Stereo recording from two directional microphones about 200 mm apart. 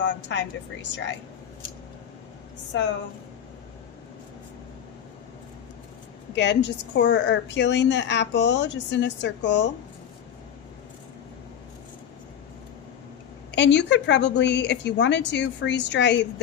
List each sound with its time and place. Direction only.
0.0 s a woman's voice: 65° left (ahead or behind)
6.3 s a woman's voice: 60° left (ahead or behind)
13.5 s a woman's voice: 60° left (ahead or behind)